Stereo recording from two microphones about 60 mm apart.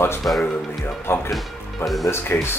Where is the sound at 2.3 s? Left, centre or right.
Left.